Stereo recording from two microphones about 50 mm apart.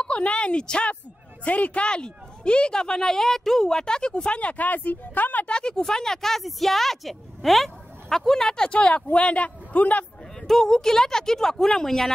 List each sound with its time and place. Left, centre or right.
0.0 s a woman's voice: left
5.5 s speech: centre
10.4 s speech: centre